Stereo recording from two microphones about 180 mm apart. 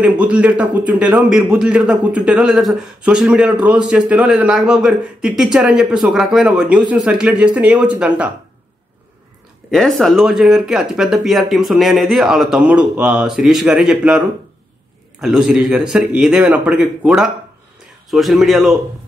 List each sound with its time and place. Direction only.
0.0 s speech: 5° right (ahead or behind)
9.7 s speech: centre (ahead or behind)